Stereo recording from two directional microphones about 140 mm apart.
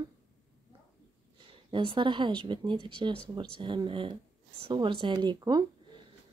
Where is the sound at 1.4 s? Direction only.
35° right (ahead or behind).